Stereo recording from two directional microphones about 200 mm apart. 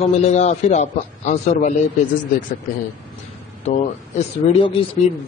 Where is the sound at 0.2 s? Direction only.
35° left (ahead or behind).